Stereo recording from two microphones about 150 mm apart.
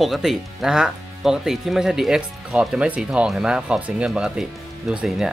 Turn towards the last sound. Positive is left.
turn(degrees=-5)  # may be behind; listen again after turning